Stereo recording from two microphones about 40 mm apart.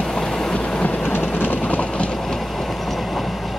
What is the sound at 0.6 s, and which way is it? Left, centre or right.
Train, left.